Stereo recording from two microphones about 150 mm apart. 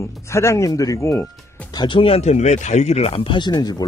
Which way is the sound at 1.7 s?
30° left (ahead or behind).